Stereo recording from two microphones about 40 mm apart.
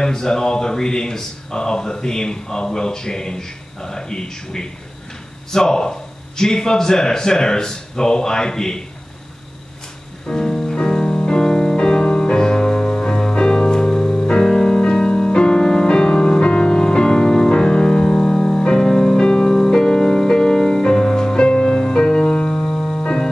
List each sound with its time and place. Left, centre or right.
0.0 s speech: centre
10.2 s music: centre